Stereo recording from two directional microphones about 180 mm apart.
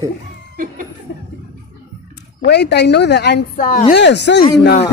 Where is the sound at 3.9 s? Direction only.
75° left (ahead or behind).